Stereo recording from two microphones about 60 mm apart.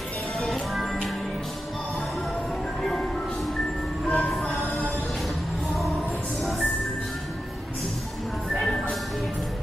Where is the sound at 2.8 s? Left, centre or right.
Centre.